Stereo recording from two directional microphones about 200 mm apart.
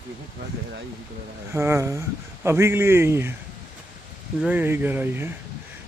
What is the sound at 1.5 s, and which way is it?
Speech, 15° right (ahead or behind).